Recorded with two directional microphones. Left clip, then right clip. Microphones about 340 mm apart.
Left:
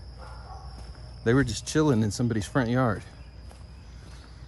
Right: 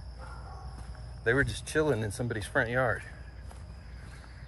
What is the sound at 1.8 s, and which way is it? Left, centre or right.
Speech, left.